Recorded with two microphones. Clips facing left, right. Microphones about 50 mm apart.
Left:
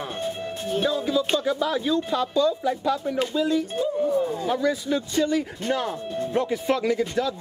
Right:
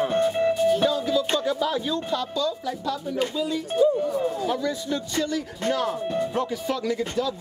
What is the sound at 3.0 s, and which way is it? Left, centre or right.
Speech, left.